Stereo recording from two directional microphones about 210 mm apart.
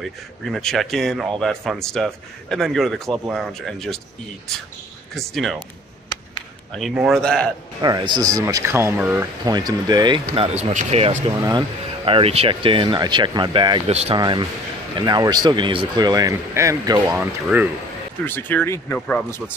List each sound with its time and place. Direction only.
0.5 s a man's voice: centre (ahead or behind)
5.1 s a man's voice: centre (ahead or behind)
6.1 s a sound: 20° left (ahead or behind)
6.7 s a man's voice: centre (ahead or behind)
7.8 s speech: 20° right (ahead or behind)
17.2 s a man's voice: 5° right (ahead or behind)
18.2 s speech: 10° left (ahead or behind)